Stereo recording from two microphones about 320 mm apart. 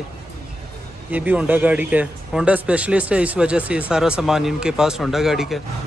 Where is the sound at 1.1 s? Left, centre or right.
Centre.